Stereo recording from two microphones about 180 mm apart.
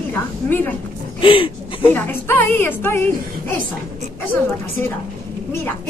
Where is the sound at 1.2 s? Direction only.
30° left (ahead or behind).